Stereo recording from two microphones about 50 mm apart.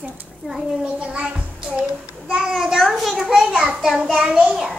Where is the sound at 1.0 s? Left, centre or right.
Right.